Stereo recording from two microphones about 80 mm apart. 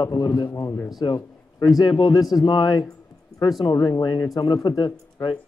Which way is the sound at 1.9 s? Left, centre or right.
Left.